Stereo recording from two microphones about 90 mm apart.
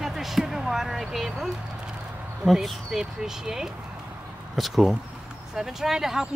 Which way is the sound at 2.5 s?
5° right (ahead or behind).